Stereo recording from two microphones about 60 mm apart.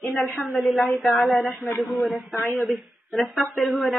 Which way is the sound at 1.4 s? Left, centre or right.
Left.